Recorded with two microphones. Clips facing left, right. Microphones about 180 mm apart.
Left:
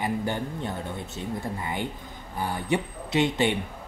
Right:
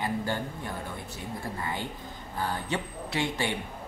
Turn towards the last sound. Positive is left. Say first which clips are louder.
# left 6 dB
turn(degrees=20)  # may be behind; listen again after turning